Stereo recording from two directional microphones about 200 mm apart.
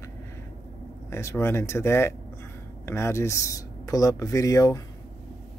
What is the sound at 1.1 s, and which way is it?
Speech, 15° left (ahead or behind).